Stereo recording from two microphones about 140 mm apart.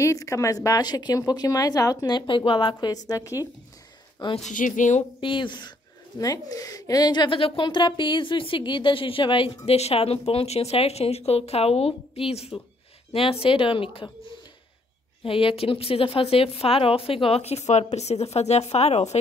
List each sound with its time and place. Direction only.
0.0 s a woman's voice: 20° left (ahead or behind)
4.5 s a woman's voice: 65° left (ahead or behind)
5.2 s a woman's voice: 35° left (ahead or behind)
15.2 s a woman's voice: 40° left (ahead or behind)